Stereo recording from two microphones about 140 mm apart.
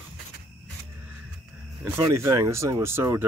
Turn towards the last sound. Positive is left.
turn(degrees=-15)  # may be behind; listen again after turning